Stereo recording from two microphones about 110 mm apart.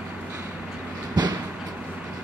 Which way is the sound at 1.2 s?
35° right (ahead or behind).